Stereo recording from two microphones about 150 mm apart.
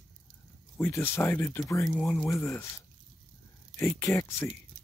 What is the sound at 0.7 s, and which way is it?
Speech, 15° left (ahead or behind).